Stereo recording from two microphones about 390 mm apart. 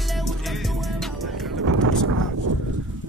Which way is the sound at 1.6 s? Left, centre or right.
Right.